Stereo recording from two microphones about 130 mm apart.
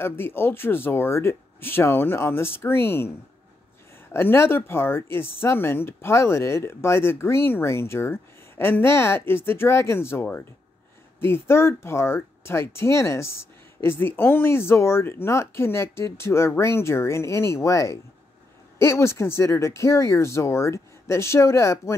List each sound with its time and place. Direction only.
0.0 s speech: 15° left (ahead or behind)
4.1 s speech: 20° left (ahead or behind)